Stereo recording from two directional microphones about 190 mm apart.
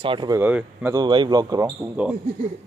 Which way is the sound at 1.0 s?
25° right (ahead or behind).